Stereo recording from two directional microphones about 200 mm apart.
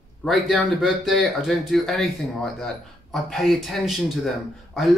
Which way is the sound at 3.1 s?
Centre (ahead or behind).